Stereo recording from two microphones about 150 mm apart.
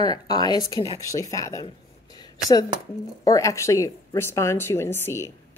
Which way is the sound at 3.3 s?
20° left (ahead or behind).